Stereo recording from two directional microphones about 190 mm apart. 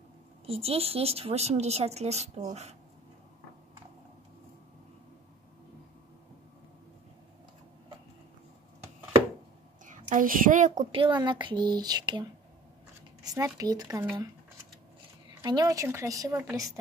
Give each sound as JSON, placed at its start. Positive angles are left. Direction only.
{"t": 0.5, "sound": "speech", "side_deg": -30}
{"t": 9.8, "sound": "a woman's voice", "side_deg": -40}
{"t": 10.7, "sound": "speech", "side_deg": -25}
{"t": 15.4, "sound": "speech", "side_deg": -20}